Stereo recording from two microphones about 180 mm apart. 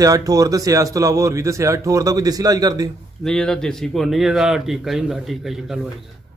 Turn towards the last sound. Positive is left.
turn(degrees=0)  # may be behind; listen again after turning